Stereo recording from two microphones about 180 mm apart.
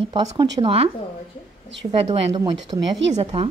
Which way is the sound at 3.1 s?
35° right (ahead or behind).